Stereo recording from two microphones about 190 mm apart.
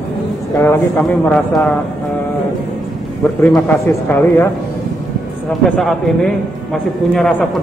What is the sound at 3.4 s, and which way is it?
Speech, 10° left (ahead or behind).